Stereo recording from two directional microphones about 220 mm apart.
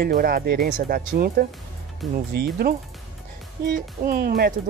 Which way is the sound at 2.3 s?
45° right (ahead or behind).